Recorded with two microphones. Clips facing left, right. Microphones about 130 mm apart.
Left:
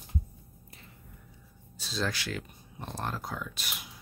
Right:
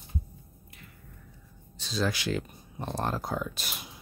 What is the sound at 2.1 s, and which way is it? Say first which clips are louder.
Speech: right 5 dB; 20° right (ahead or behind).